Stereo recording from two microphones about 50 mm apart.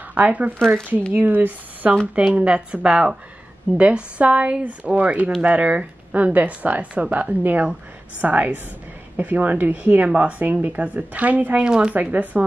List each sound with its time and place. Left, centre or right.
0.1 s speech: right
2.1 s speech: right
3.7 s speech: right
11.6 s speech: centre
11.9 s speech: right